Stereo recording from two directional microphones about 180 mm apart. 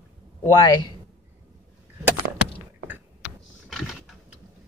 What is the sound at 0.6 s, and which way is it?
Speech, 20° left (ahead or behind).